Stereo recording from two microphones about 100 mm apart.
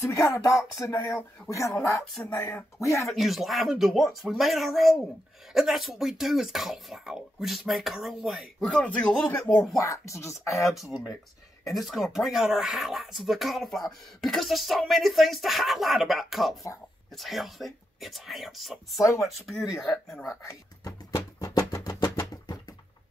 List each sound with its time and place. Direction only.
0.1 s music: 30° left (ahead or behind)
2.2 s speech: 20° left (ahead or behind)
2.8 s speech: 30° left (ahead or behind)
3.1 s speech: centre (ahead or behind)
8.6 s speech: 10° left (ahead or behind)
9.8 s music: 30° left (ahead or behind)
10.7 s speech: centre (ahead or behind)
18.9 s music: 30° left (ahead or behind)
19.2 s speech: centre (ahead or behind)
20.2 s a sound: 30° left (ahead or behind)